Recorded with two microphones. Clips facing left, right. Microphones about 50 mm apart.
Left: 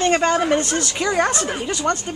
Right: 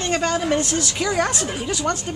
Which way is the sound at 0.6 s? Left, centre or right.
Centre.